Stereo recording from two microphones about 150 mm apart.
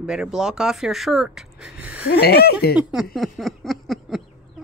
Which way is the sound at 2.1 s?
90° left.